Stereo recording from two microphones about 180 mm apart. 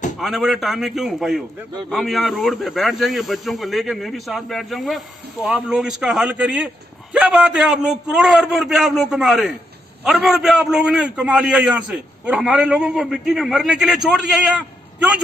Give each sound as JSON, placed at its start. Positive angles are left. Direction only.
{"t": 0.2, "sound": "speech", "side_deg": 0}